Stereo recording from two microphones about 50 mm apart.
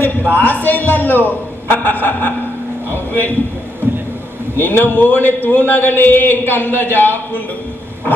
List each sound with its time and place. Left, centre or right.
0.4 s a man's voice: left
2.9 s a sound: left
4.6 s a man's voice: left